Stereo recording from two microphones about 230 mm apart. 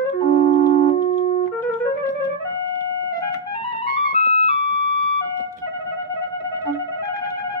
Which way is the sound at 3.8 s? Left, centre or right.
Left.